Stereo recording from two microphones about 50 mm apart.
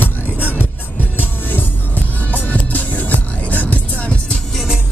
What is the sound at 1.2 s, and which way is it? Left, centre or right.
Music, left.